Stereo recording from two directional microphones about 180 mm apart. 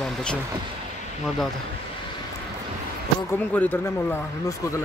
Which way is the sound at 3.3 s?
10° left (ahead or behind).